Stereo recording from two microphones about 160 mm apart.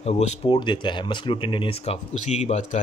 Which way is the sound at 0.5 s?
30° left (ahead or behind).